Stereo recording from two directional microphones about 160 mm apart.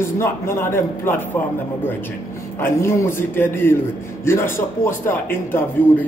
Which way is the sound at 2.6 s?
15° left (ahead or behind).